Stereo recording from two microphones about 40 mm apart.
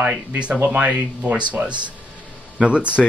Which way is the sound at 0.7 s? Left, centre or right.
Right.